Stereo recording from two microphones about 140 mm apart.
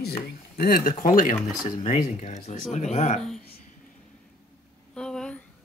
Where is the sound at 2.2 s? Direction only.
55° left (ahead or behind).